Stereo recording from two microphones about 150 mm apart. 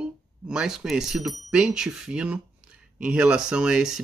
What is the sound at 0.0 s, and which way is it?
Speech, 5° right (ahead or behind).